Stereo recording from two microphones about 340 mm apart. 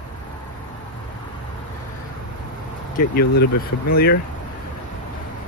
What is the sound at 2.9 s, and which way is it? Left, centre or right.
Speech, left.